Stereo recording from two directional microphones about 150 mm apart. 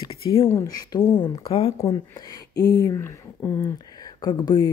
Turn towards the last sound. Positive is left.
turn(degrees=30)  # may be behind; listen again after turning